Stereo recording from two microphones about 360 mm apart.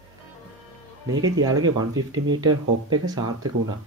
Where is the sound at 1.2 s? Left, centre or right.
Centre.